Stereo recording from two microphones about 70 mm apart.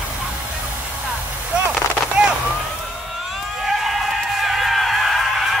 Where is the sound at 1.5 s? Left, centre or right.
Centre.